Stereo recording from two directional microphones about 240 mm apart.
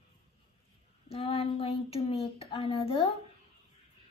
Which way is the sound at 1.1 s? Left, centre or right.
Left.